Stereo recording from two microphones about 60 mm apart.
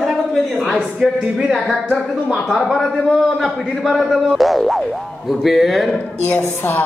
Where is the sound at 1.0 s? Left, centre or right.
Centre.